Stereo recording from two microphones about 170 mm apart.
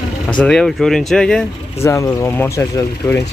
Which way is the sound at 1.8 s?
15° left (ahead or behind).